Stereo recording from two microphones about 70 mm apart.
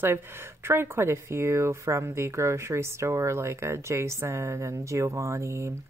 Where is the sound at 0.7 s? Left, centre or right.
Right.